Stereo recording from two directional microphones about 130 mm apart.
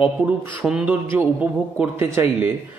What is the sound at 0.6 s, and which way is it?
A man's voice, 5° right (ahead or behind).